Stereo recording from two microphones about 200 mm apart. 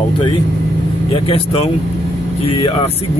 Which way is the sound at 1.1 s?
25° left (ahead or behind).